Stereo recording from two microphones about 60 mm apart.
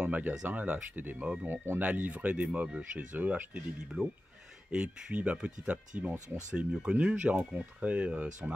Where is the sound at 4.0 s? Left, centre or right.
Centre.